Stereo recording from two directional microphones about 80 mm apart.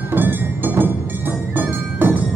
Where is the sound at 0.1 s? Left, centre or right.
Right.